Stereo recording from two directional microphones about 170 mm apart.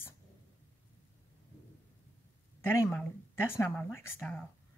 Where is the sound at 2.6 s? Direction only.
10° left (ahead or behind).